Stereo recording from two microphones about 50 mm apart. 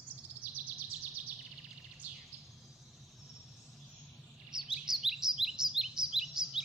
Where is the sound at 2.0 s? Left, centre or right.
Right.